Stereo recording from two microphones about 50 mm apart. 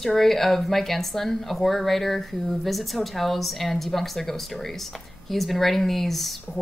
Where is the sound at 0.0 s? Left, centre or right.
Centre.